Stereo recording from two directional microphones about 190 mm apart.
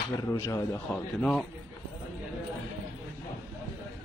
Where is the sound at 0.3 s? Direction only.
15° left (ahead or behind).